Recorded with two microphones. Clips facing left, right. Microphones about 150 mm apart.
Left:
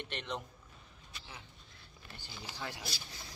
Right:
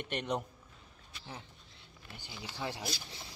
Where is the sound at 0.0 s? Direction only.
50° right (ahead or behind).